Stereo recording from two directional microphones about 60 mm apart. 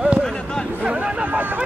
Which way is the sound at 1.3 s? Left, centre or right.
Right.